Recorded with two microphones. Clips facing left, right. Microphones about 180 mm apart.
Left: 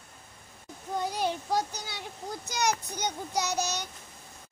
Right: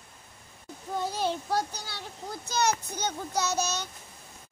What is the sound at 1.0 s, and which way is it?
Child singing, 15° left (ahead or behind).